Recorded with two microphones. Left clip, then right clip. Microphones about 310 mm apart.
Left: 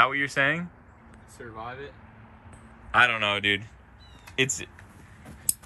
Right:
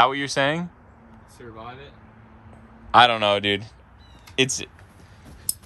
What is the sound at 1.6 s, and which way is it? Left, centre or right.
Speech, centre.